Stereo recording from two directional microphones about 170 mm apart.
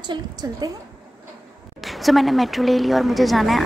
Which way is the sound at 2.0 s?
Centre (ahead or behind).